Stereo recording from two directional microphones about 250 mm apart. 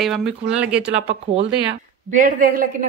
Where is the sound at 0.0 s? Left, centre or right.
Centre.